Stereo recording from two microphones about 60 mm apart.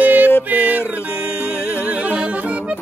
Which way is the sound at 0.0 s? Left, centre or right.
Right.